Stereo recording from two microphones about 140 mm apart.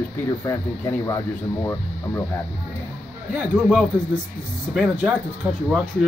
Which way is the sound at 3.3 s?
5° right (ahead or behind).